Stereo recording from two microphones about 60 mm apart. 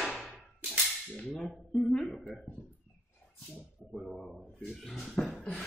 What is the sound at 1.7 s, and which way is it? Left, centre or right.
Speech, centre.